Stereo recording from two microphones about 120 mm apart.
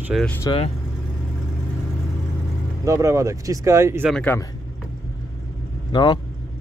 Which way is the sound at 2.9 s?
25° right (ahead or behind).